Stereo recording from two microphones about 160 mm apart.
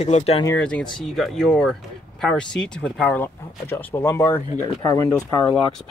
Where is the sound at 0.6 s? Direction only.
5° left (ahead or behind); by 4.9 s 20° left (ahead or behind).